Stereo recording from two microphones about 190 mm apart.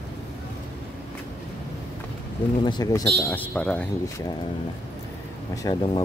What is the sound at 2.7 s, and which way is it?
Speech, 20° left (ahead or behind).